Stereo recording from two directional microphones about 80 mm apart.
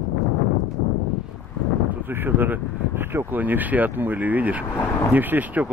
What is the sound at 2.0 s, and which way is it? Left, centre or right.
Speech, right.